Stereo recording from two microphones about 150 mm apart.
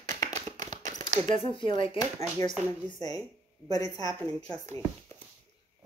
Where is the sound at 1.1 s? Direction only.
55° right (ahead or behind).